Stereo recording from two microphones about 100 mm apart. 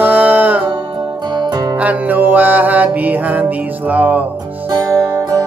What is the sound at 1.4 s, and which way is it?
Music, 45° right (ahead or behind).